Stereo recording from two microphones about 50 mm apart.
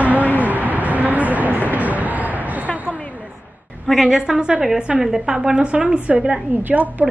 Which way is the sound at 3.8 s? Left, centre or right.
Centre.